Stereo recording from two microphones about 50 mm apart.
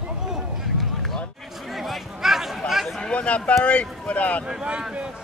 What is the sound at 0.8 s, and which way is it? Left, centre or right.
Run, centre.